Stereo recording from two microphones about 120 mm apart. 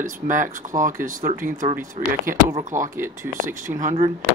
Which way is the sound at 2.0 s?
55° right (ahead or behind).